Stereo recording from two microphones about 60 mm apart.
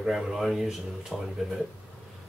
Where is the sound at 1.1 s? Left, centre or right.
Right.